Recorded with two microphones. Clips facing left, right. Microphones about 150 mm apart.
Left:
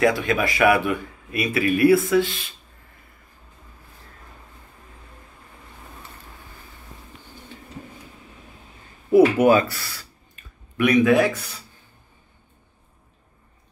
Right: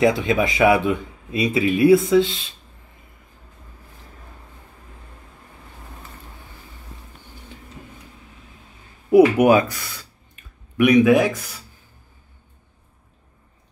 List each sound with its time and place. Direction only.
0.0 s speech: 20° right (ahead or behind)
9.1 s speech: 15° right (ahead or behind)